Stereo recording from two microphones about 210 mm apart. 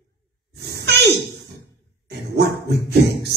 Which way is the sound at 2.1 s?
50° right (ahead or behind).